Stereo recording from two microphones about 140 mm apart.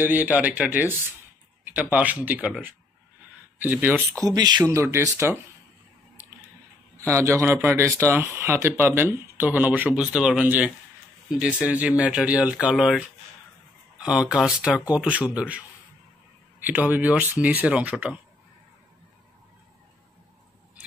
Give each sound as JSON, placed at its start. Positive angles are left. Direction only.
{"t": 0.0, "sound": "speech", "side_deg": -15}
{"t": 4.2, "sound": "speech", "side_deg": -25}
{"t": 7.0, "sound": "speech", "side_deg": -20}